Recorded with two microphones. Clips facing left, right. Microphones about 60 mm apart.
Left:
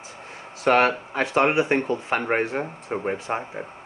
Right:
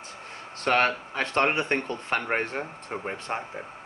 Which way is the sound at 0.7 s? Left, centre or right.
Centre.